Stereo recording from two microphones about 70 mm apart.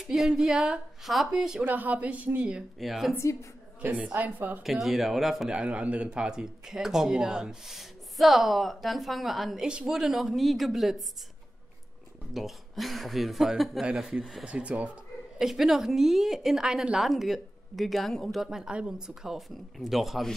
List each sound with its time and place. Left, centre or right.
0.0 s speech: centre
1.6 s speech: right
2.8 s speech: centre
3.8 s speech: right
4.6 s speech: centre
5.5 s speech: centre
12.4 s speech: centre
15.3 s speech: centre
18.4 s speech: centre